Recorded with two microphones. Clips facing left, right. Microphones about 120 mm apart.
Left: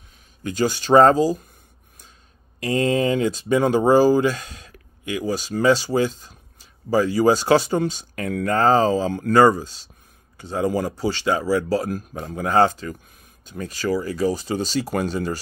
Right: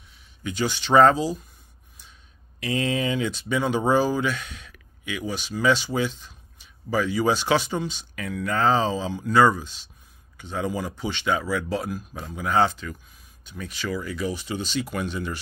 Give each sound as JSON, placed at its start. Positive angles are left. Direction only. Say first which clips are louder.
{"t": 0.4, "sound": "speech", "louder": "left 5 dB", "side_deg": 40}
{"t": 2.6, "sound": "speech", "louder": "left 5 dB", "side_deg": 40}